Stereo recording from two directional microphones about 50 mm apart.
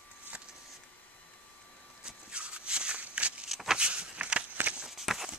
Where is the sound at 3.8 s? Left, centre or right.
Right.